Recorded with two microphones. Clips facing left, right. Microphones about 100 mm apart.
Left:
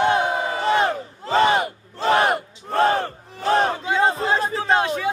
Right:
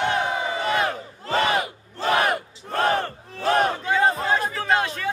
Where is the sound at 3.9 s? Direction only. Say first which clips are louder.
Left 1 dB; 25° left (ahead or behind).